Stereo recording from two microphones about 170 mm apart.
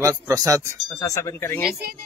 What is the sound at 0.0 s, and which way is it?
Speech, 20° right (ahead or behind).